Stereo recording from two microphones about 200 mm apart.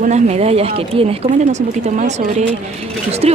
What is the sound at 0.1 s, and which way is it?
Speech, 30° right (ahead or behind).